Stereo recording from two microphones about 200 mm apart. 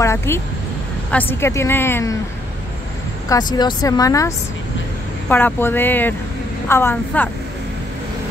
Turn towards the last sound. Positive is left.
turn(degrees=10)  # may be behind; listen again after turning